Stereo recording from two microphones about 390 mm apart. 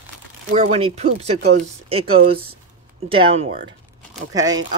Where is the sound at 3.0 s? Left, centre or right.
Centre.